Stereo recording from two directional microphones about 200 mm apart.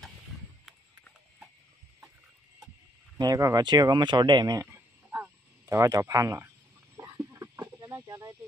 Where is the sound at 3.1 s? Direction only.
20° right (ahead or behind).